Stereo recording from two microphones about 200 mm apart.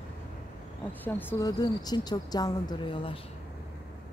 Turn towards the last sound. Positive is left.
turn(degrees=25)  # may be behind; listen again after turning